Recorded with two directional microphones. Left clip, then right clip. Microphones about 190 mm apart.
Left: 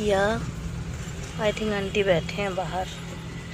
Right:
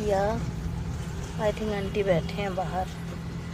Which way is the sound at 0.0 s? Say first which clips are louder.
Left 3 dB; 15° left (ahead or behind).